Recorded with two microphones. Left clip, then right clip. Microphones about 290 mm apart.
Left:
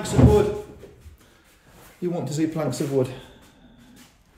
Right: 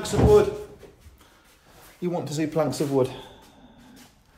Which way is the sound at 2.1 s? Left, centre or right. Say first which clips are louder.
Right 2 dB; centre.